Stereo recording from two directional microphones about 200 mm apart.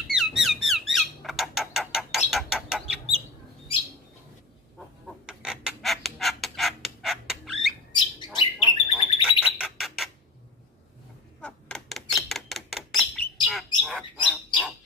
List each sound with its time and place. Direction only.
0.1 s squawk: centre (ahead or behind)
4.7 s chicken: centre (ahead or behind)
8.3 s bird: 20° left (ahead or behind)
9.2 s bird: 5° right (ahead or behind)
11.4 s bird: centre (ahead or behind)